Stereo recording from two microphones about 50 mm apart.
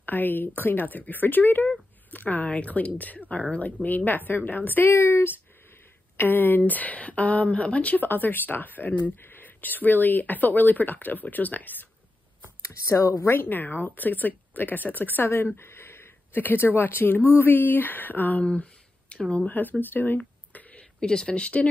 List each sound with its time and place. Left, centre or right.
0.0 s speech: left
3.8 s speech: left
4.8 s speech: left
6.1 s speech: left
8.1 s speech: left
12.6 s speech: left
13.3 s speech: left
18.4 s a sound: left
19.4 s speech: left
21.0 s speech: centre